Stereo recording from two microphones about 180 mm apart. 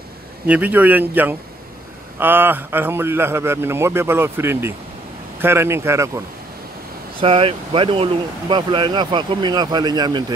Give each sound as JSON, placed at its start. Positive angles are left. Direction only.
{"t": 0.5, "sound": "a man's voice", "side_deg": -10}
{"t": 7.2, "sound": "speech", "side_deg": -30}